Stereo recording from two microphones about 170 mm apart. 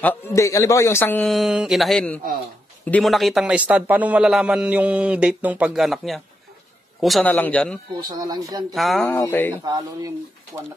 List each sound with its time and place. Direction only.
0.0 s a man's voice: 15° left (ahead or behind)
1.2 s a man's voice: centre (ahead or behind)
8.1 s speech: 25° right (ahead or behind)
8.7 s a man's voice: centre (ahead or behind)
9.7 s speech: 20° right (ahead or behind)